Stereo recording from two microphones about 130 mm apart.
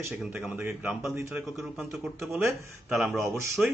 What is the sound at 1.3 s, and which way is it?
Speech, centre (ahead or behind).